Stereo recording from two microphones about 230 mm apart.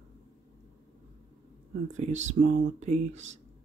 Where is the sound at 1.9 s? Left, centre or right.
Right.